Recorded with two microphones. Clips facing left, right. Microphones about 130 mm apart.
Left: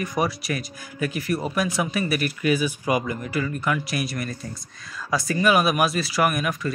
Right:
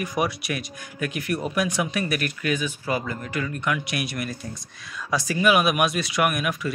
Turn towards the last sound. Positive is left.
turn(degrees=0)  # may be behind; listen again after turning